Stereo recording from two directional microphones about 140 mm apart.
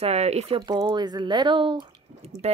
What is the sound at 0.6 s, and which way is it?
Speech, 30° right (ahead or behind).